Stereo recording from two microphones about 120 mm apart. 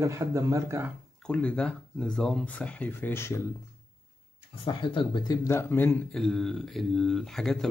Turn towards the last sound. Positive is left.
turn(degrees=0)  # may be behind; listen again after turning